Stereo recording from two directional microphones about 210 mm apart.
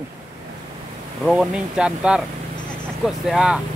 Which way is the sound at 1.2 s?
Centre (ahead or behind).